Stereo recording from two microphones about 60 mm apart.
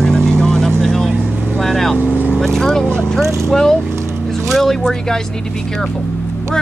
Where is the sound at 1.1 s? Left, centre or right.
Right.